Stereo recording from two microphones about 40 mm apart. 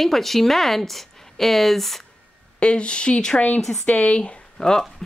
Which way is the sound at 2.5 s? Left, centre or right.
Left.